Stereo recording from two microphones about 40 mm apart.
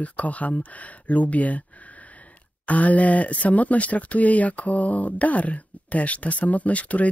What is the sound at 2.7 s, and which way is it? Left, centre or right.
Speech, left.